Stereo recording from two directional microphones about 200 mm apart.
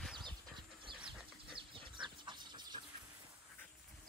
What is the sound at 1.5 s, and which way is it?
Bird, 25° right (ahead or behind).